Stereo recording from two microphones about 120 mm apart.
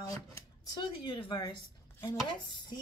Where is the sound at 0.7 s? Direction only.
45° left (ahead or behind).